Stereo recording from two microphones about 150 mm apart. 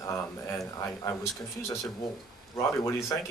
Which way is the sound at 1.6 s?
20° left (ahead or behind).